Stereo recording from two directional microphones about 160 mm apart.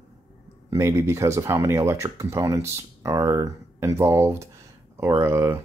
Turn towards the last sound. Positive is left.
turn(degrees=-15)  # may be behind; listen again after turning